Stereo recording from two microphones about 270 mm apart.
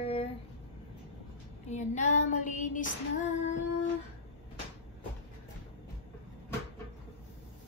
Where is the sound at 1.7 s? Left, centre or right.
Left.